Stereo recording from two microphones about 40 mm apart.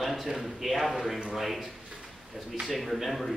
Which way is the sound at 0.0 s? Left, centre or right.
Centre.